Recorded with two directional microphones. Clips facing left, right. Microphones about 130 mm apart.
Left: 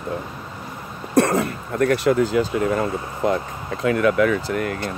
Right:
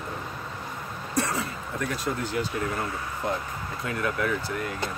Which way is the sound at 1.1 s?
60° left (ahead or behind).